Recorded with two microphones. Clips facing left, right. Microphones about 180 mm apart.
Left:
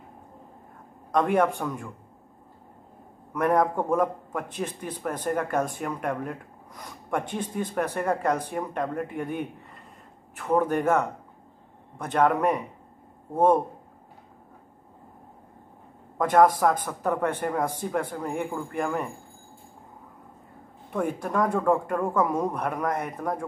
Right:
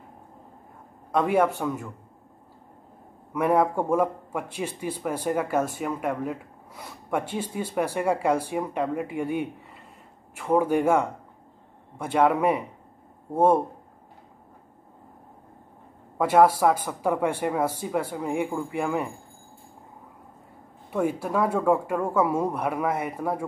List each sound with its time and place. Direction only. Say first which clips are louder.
1.1 s a man's voice: even; 5° right (ahead or behind)
3.3 s a man's voice: right 1 dB; 5° right (ahead or behind)
16.2 s a man's voice: right 1 dB; 10° right (ahead or behind)
20.9 s a man's voice: right 2 dB; 5° right (ahead or behind)